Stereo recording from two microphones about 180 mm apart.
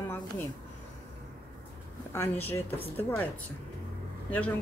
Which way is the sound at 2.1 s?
10° left (ahead or behind).